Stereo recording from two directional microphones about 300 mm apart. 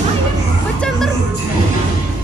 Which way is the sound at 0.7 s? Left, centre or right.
Centre.